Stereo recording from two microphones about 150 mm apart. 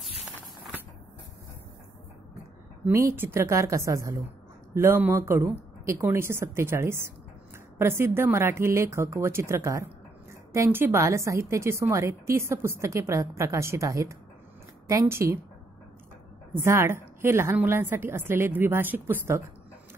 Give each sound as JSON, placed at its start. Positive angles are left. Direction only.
{"t": 2.8, "sound": "a woman's voice", "side_deg": -20}
{"t": 16.5, "sound": "a woman's voice", "side_deg": -15}